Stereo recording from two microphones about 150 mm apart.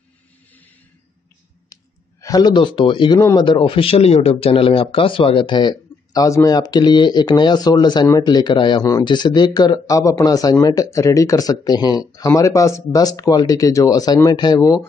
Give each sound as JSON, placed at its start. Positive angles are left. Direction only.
{"t": 2.2, "sound": "speech", "side_deg": 25}